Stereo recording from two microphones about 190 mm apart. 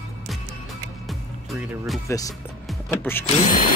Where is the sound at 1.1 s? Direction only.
Centre (ahead or behind).